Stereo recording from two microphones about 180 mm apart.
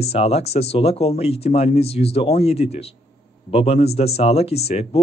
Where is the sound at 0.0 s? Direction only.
35° left (ahead or behind).